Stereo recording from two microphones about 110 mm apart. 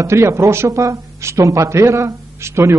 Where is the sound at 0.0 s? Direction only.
25° right (ahead or behind).